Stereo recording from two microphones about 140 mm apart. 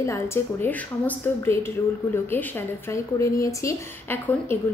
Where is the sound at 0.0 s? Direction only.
20° left (ahead or behind).